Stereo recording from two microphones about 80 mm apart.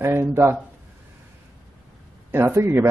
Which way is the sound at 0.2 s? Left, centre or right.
Right.